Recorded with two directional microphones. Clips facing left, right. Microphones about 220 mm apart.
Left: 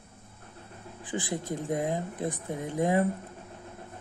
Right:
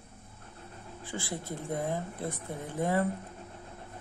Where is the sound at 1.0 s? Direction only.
15° left (ahead or behind).